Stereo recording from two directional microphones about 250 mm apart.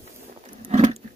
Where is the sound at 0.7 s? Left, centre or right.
Right.